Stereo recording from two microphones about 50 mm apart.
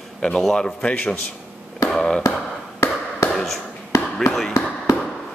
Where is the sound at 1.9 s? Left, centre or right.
Centre.